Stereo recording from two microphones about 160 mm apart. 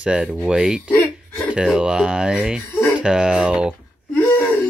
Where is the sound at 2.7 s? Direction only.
10° left (ahead or behind).